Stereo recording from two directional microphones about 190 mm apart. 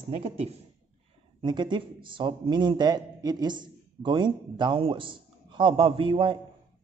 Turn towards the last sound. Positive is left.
turn(degrees=-25)  # may be behind; listen again after turning